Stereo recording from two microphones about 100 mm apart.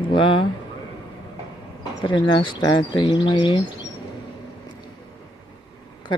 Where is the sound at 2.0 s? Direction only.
45° left (ahead or behind).